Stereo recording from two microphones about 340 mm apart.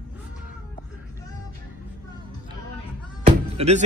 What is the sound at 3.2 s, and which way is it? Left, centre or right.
Music, centre.